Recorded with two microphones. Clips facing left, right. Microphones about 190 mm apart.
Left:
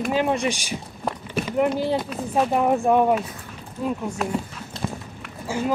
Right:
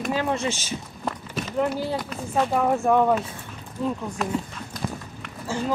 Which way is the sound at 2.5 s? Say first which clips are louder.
Left 1 dB; 20° left (ahead or behind).